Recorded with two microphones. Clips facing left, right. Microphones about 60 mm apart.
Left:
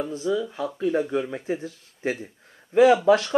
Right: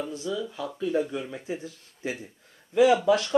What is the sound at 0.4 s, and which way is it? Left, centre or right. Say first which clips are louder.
A man's voice: left 4 dB; left.